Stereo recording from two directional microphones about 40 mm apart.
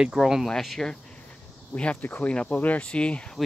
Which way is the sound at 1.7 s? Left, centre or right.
Left.